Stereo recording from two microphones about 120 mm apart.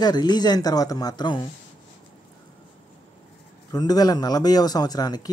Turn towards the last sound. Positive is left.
turn(degrees=35)  # may be behind; listen again after turning